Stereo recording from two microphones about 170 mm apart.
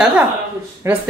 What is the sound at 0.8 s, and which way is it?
Speech, 15° right (ahead or behind).